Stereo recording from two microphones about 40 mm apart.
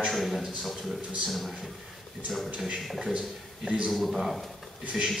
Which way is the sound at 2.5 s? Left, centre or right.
Right.